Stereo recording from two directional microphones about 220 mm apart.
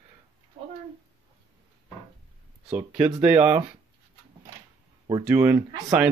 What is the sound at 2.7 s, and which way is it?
Speech, 5° right (ahead or behind).